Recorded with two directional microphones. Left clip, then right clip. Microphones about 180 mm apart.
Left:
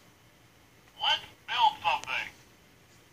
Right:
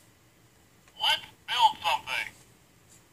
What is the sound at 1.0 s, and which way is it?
Telephone, 45° right (ahead or behind).